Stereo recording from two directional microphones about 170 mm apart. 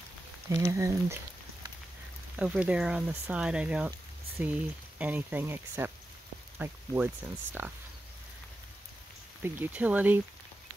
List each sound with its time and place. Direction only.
0.5 s speech: 20° right (ahead or behind)
9.4 s speech: 10° right (ahead or behind)